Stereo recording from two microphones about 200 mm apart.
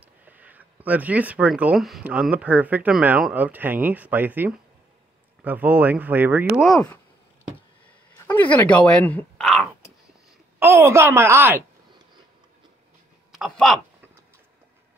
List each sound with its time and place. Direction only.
0.0 s speech: 5° right (ahead or behind)
8.3 s speech: 10° left (ahead or behind)
10.6 s speech: 10° right (ahead or behind)
13.4 s speech: centre (ahead or behind)